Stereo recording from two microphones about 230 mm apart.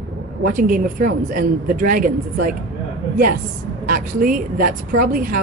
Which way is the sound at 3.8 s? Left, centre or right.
Right.